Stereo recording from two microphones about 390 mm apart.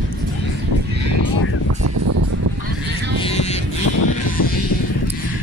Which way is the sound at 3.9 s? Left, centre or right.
Left.